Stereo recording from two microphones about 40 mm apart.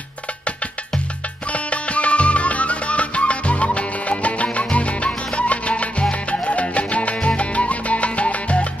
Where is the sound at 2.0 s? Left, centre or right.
Left.